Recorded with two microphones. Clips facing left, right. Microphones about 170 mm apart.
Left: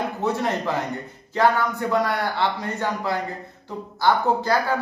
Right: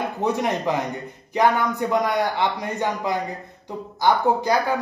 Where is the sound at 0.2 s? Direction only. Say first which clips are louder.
Right 2 dB; 15° right (ahead or behind).